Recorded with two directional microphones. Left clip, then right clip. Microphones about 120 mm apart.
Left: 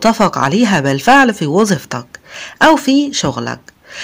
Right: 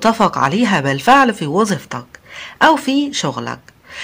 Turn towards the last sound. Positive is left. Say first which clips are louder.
# left 2 dB
turn(degrees=35)  # may be behind; listen again after turning